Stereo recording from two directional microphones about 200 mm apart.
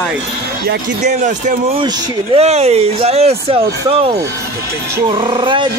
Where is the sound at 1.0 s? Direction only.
40° right (ahead or behind).